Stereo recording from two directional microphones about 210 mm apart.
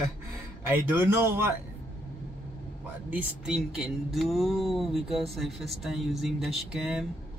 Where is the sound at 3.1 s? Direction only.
5° right (ahead or behind).